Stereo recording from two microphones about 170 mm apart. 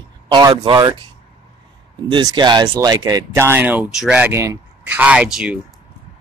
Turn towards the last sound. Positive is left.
turn(degrees=-5)  # may be behind; listen again after turning